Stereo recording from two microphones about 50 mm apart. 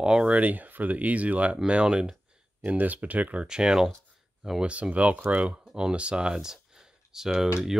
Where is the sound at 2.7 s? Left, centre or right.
Right.